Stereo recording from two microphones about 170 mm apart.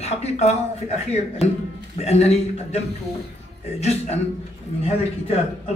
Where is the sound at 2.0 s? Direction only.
40° left (ahead or behind).